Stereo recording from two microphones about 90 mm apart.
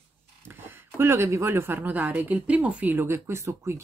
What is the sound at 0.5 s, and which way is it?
Speech, 25° right (ahead or behind).